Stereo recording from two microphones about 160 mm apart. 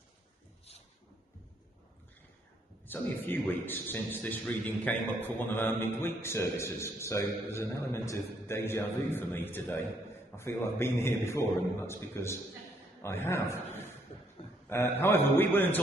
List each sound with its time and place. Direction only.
2.9 s a man's voice: 10° left (ahead or behind)
14.7 s a man's voice: 15° left (ahead or behind)